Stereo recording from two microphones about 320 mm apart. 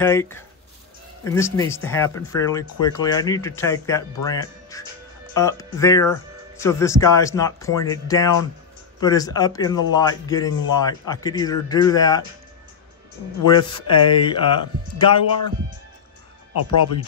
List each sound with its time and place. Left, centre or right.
0.0 s speech: centre
13.5 s speech: centre